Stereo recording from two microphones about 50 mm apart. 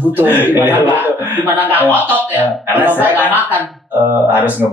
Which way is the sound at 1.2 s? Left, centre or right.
Right.